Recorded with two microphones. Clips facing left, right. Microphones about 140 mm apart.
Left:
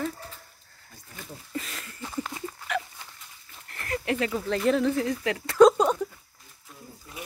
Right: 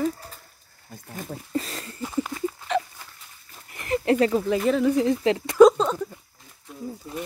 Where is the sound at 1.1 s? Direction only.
35° right (ahead or behind).